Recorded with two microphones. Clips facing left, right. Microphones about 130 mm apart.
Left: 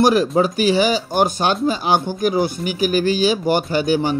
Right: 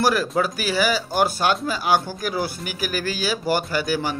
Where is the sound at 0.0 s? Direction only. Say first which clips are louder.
Left 6 dB; 20° left (ahead or behind).